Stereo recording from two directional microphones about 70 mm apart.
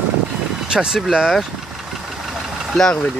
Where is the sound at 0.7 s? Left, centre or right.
Centre.